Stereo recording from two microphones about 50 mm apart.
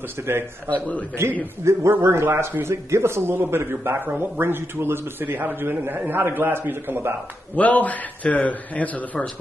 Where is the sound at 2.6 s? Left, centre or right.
Right.